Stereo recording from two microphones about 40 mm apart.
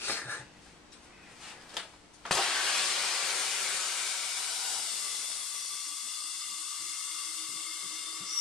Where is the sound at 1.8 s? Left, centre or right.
Centre.